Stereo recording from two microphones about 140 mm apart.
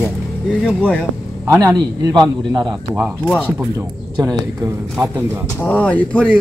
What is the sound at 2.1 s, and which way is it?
Speech, 30° right (ahead or behind).